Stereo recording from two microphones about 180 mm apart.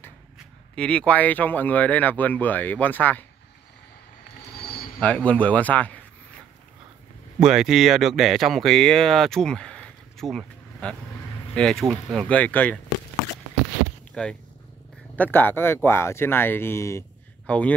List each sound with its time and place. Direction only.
0.7 s speech: 5° left (ahead or behind)
4.6 s a sound: 60° left (ahead or behind)
5.0 s speech: 10° left (ahead or behind)
7.3 s speech: 5° right (ahead or behind)
14.2 s speech: 5° left (ahead or behind)